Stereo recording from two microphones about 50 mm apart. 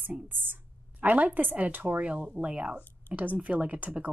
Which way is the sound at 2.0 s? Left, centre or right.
Right.